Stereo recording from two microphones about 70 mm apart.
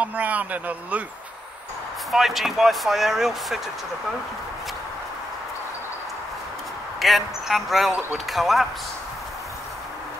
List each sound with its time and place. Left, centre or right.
0.0 s speech: right
2.0 s speech: centre
7.0 s speech: centre